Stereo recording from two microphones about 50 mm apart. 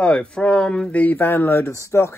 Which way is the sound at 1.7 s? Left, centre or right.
Left.